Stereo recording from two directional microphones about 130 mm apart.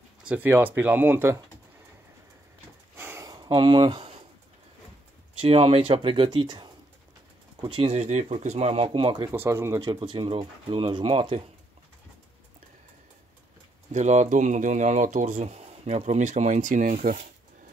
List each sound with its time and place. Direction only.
0.2 s speech: 10° right (ahead or behind)
3.0 s a sound: 20° right (ahead or behind)
3.4 s speech: 40° right (ahead or behind)
5.4 s speech: 50° right (ahead or behind)
9.3 s speech: 20° right (ahead or behind); by 11.4 s 45° right (ahead or behind)
13.9 s speech: 65° right (ahead or behind); by 17.3 s 90° right